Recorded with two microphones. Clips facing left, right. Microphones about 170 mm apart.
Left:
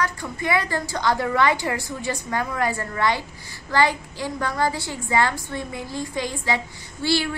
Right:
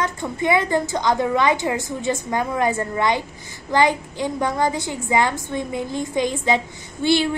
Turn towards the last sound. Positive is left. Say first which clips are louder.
# right 4 dB
turn(degrees=-20)  # may be behind; listen again after turning